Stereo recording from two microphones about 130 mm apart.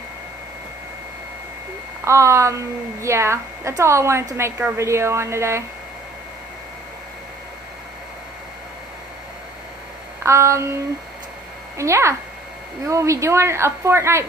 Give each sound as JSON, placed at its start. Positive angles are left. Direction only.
{"t": 2.0, "sound": "a woman's voice", "side_deg": -20}
{"t": 10.2, "sound": "a woman's voice", "side_deg": -25}